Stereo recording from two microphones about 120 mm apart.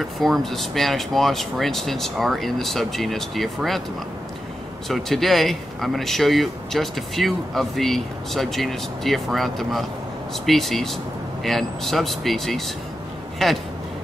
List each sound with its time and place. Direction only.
0.0 s speech: centre (ahead or behind)
4.8 s speech: centre (ahead or behind)